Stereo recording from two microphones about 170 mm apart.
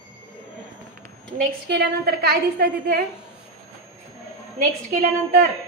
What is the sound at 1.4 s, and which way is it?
A woman's voice, 80° right.